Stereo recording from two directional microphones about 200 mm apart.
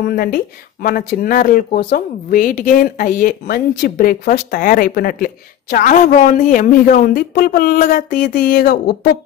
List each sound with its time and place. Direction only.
0.1 s speech: 45° left (ahead or behind)